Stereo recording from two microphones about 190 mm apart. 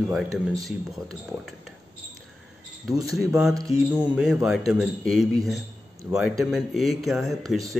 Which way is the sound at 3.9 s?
5° right (ahead or behind).